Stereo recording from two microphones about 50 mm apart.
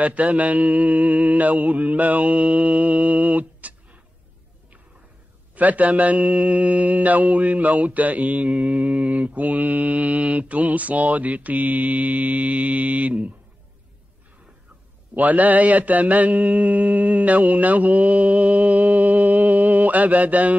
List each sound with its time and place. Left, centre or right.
0.0 s speech: right
5.5 s speech: right
15.1 s speech: right